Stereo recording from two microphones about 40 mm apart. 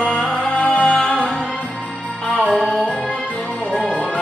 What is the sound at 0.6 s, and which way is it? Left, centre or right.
Music, left.